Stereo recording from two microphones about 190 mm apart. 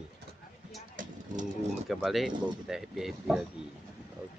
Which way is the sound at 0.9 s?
40° right (ahead or behind).